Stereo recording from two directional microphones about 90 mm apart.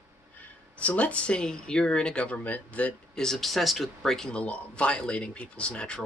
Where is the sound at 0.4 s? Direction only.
15° left (ahead or behind).